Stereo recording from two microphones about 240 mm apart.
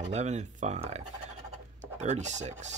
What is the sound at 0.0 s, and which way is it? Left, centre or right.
Speech, right.